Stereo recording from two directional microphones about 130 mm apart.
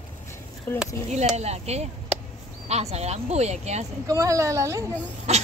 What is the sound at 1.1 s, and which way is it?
Speech, 60° right (ahead or behind).